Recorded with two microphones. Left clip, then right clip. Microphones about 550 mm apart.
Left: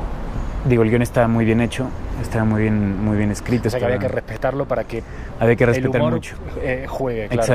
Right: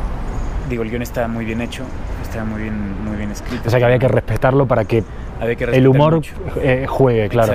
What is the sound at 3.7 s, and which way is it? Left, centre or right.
Speech, right.